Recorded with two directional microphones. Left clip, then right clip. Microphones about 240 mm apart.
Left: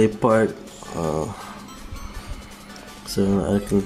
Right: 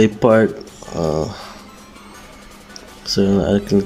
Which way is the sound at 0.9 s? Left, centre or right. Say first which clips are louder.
Right 5 dB; centre.